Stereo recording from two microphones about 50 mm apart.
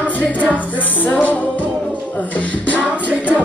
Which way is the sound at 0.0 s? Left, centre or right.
Left.